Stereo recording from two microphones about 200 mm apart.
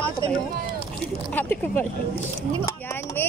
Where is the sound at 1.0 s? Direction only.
10° left (ahead or behind).